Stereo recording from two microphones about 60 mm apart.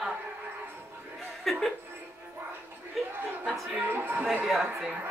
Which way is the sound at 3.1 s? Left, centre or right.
Right.